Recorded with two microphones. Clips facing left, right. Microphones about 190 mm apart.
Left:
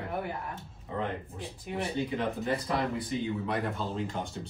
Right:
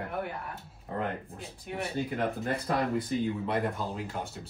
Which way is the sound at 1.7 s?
Centre (ahead or behind).